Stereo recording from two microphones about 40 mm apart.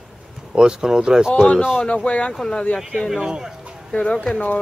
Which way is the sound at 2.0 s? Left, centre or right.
Left.